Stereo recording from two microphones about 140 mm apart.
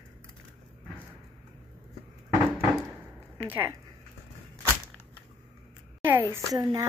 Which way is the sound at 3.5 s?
15° right (ahead or behind).